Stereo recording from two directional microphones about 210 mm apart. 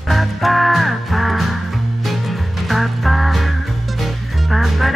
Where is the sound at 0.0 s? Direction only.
Centre (ahead or behind).